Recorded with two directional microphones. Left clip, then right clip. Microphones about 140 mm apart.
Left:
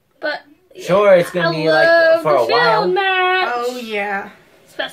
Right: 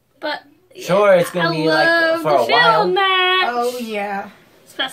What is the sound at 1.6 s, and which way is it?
A woman's voice, 20° right (ahead or behind).